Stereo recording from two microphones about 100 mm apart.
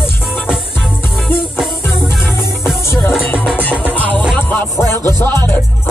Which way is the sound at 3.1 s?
5° right (ahead or behind).